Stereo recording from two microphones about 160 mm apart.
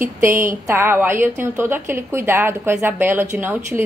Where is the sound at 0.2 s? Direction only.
15° right (ahead or behind).